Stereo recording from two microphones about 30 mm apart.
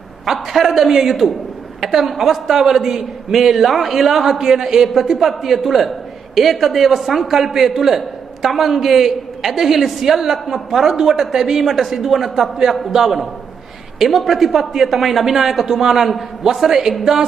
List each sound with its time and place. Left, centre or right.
0.2 s a man's voice: centre
2.5 s a man's voice: centre
15.5 s a man's voice: centre
15.8 s a man's voice: centre